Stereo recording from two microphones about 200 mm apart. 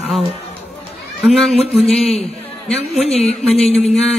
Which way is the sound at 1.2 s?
Centre (ahead or behind).